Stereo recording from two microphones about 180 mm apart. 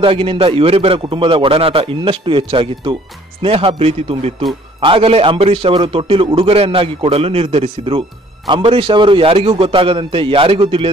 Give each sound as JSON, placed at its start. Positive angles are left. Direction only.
{"t": 0.0, "sound": "a man's voice", "side_deg": -30}